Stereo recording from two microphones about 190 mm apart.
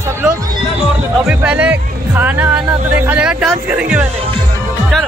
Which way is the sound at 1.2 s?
5° right (ahead or behind).